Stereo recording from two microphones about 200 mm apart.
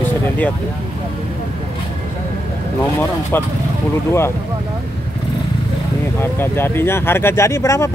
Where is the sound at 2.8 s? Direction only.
10° left (ahead or behind).